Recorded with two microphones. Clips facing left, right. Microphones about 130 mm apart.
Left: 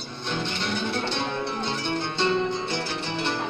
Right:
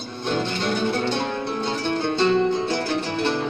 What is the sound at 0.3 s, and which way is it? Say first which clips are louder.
Music: right 5 dB; 45° right (ahead or behind).